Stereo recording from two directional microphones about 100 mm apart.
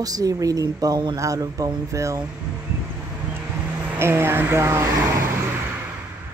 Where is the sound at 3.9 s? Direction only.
25° right (ahead or behind).